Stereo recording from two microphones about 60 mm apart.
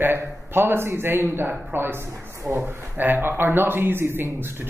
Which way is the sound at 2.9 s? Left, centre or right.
Right.